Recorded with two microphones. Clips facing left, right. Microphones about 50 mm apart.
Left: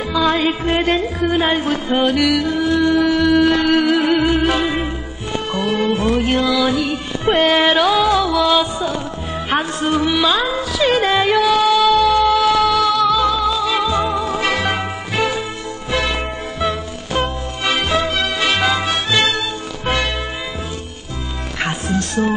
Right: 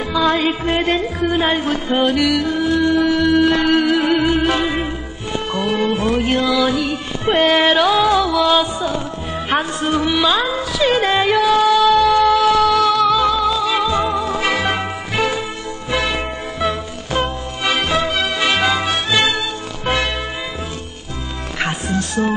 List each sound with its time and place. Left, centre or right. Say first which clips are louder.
0.1 s music: even; centre
21.5 s music: even; centre